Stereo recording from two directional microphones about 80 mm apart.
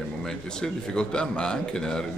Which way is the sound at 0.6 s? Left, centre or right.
Centre.